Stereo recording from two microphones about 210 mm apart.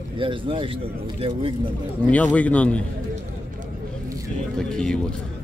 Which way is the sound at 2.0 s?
5° left (ahead or behind).